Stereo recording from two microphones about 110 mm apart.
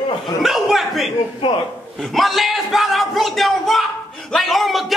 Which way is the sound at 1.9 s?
Centre (ahead or behind).